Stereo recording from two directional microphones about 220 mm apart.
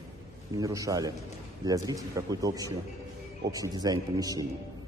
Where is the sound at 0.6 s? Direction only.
15° right (ahead or behind).